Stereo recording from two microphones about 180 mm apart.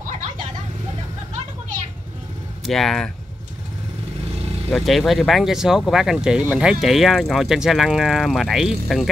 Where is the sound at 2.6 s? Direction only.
Centre (ahead or behind).